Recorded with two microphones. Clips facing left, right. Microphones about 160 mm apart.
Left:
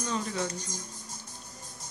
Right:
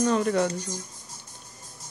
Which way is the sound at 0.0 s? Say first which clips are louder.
Right 9 dB; 60° right (ahead or behind).